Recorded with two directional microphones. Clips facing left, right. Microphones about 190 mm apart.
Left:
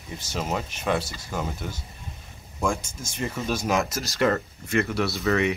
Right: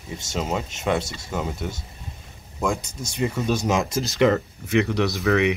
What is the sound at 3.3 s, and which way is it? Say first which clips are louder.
Speech: right 3 dB; 5° left (ahead or behind).